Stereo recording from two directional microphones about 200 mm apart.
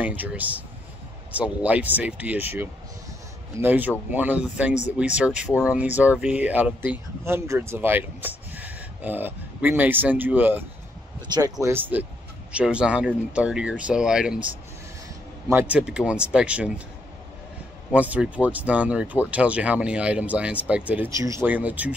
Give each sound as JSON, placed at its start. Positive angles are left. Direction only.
{"t": 0.0, "sound": "speech", "side_deg": -10}
{"t": 11.2, "sound": "speech", "side_deg": -20}
{"t": 11.6, "sound": "speech", "side_deg": -10}
{"t": 15.4, "sound": "speech", "side_deg": -10}
{"t": 17.9, "sound": "speech", "side_deg": -5}